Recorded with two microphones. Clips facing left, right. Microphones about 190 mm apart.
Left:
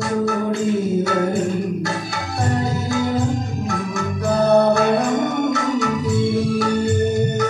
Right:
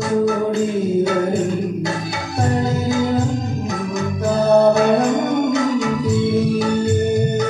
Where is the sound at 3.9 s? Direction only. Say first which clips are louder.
Right 1 dB; 20° right (ahead or behind).